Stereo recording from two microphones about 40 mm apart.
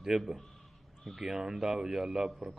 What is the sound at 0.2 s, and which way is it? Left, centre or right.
Speech, centre.